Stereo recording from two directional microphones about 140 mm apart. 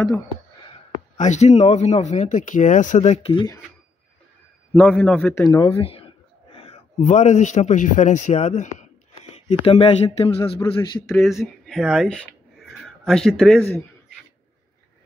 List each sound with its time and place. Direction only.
1.1 s speech: 60° left (ahead or behind)
4.7 s a man's voice: 5° left (ahead or behind)
5.5 s speech: 20° left (ahead or behind)
5.8 s speech: 45° left (ahead or behind)
6.5 s a sound: 45° left (ahead or behind)
7.0 s speech: 60° left (ahead or behind)
9.3 s speech: 40° left (ahead or behind)
11.1 s speech: centre (ahead or behind)
12.5 s a sound: centre (ahead or behind)